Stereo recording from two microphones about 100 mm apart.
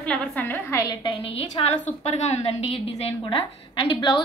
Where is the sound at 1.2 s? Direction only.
80° left; by 4.2 s 55° left (ahead or behind).